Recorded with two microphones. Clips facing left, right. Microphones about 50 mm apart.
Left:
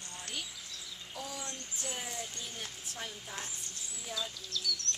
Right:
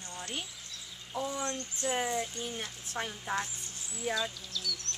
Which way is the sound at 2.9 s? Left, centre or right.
Right.